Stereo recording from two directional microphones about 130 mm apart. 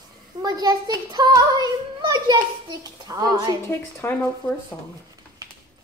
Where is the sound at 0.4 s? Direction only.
30° right (ahead or behind).